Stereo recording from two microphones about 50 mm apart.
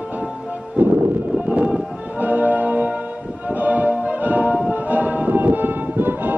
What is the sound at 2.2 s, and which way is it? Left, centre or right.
Music, right.